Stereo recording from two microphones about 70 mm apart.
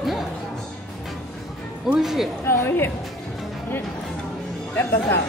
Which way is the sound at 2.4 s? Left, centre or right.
Left.